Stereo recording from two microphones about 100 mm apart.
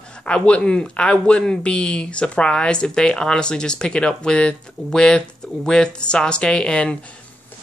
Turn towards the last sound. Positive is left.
turn(degrees=10)  # may be behind; listen again after turning